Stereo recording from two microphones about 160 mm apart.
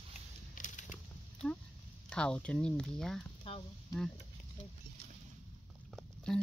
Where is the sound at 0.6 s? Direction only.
50° left (ahead or behind).